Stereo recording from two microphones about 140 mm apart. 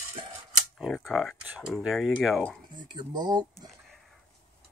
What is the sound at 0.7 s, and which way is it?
Speech, centre (ahead or behind).